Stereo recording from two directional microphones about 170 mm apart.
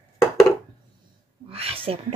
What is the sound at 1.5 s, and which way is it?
Whispering, 35° right (ahead or behind).